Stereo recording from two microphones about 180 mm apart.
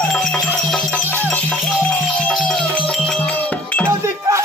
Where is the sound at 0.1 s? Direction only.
5° left (ahead or behind).